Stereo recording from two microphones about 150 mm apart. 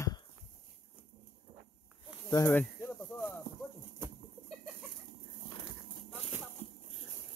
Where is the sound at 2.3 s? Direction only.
25° left (ahead or behind).